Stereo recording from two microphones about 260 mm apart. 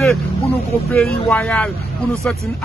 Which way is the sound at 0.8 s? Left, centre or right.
Centre.